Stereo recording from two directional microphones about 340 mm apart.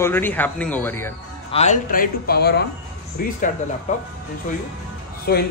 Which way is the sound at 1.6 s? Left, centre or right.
Left.